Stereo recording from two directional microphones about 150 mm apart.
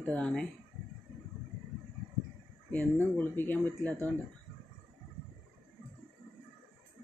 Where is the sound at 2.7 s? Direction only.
10° left (ahead or behind).